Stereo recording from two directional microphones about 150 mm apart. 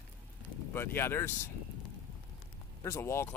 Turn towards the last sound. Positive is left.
turn(degrees=15)  # may be behind; listen again after turning